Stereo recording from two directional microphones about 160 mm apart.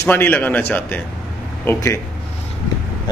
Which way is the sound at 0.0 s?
10° left (ahead or behind).